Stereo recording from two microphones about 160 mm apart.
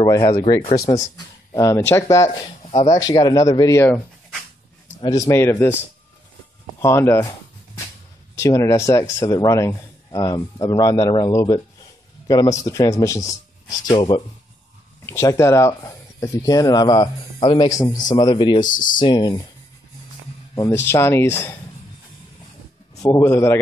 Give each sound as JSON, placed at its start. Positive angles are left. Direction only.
{"t": 0.3, "sound": "speech", "side_deg": 25}
{"t": 0.8, "sound": "speech", "side_deg": 20}
{"t": 5.0, "sound": "speech", "side_deg": 20}
{"t": 6.8, "sound": "speech", "side_deg": 15}
{"t": 8.4, "sound": "speech", "side_deg": 20}
{"t": 15.0, "sound": "speech", "side_deg": 15}
{"t": 20.5, "sound": "speech", "side_deg": 20}
{"t": 22.9, "sound": "speech", "side_deg": 20}